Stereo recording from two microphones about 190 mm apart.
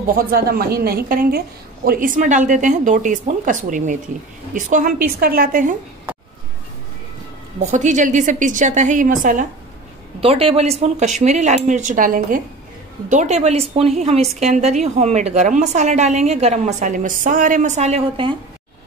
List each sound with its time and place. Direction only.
0.1 s a woman's voice: 50° right (ahead or behind)
7.6 s a woman's voice: 40° right (ahead or behind)
10.2 s a woman's voice: 30° right (ahead or behind)